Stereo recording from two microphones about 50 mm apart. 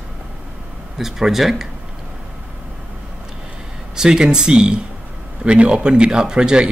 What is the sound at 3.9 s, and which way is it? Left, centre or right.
Speech, centre.